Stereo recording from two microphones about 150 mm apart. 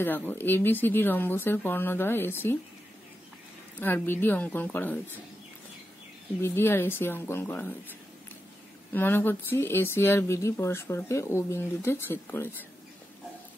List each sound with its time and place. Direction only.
0.0 s speech: 15° left (ahead or behind)
3.8 s speech: 10° left (ahead or behind)
6.4 s speech: 15° left (ahead or behind)
8.9 s speech: 15° left (ahead or behind)